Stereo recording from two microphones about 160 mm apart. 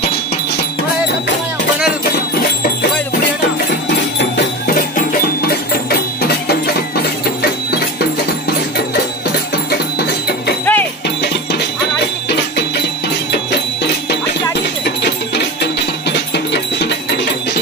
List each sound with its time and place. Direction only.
4.6 s music: 60° left (ahead or behind)
7.0 s a sound: 80° left
9.7 s music: 85° left
10.6 s music: 10° left (ahead or behind)
15.0 s music: 90° left